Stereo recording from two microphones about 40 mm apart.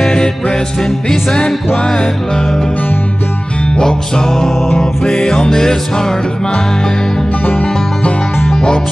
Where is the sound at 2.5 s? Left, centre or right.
Centre.